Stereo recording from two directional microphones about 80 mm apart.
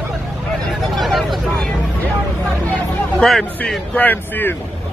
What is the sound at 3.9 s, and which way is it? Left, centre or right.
Speech, left.